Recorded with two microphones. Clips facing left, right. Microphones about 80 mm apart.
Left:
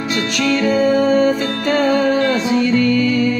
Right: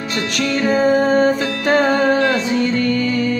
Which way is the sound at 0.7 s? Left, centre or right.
Right.